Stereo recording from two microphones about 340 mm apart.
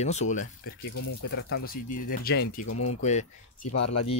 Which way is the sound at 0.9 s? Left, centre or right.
Left.